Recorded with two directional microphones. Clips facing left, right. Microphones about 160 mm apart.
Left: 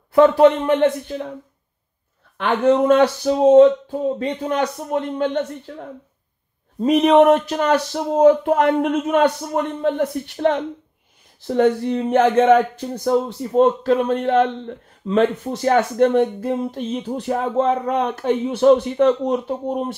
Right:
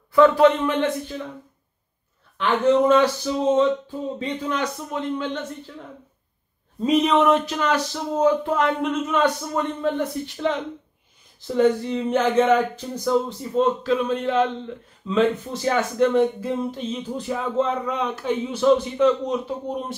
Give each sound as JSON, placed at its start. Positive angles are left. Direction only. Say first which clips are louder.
{"t": 0.7, "sound": "speech", "louder": "left 6 dB", "side_deg": 50}
{"t": 2.3, "sound": "speech", "louder": "left 2 dB", "side_deg": 55}